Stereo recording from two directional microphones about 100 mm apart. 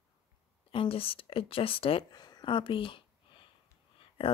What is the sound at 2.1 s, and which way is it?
Speech, 45° left (ahead or behind).